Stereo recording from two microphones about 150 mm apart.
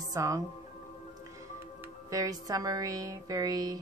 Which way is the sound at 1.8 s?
20° right (ahead or behind).